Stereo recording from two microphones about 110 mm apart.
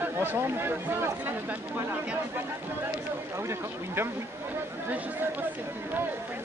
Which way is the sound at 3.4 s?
25° right (ahead or behind).